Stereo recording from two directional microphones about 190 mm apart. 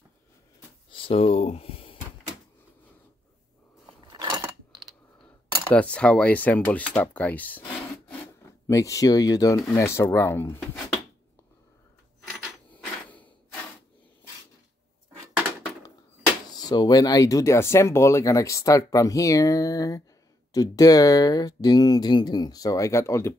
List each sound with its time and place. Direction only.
0.9 s a sound: 30° left (ahead or behind)
4.2 s cutlery: 25° right (ahead or behind)
5.7 s speech: 5° left (ahead or behind)
8.6 s speech: 15° left (ahead or behind)
13.1 s a sound: 10° left (ahead or behind)
16.6 s speech: 20° left (ahead or behind)